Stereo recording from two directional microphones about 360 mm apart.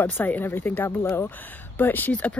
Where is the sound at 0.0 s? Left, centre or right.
Centre.